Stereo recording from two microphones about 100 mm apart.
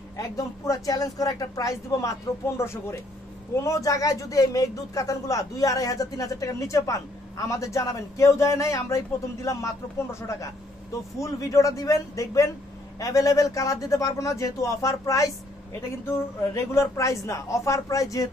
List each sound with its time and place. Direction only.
0.7 s speech: 35° left (ahead or behind)
11.1 s speech: 30° left (ahead or behind)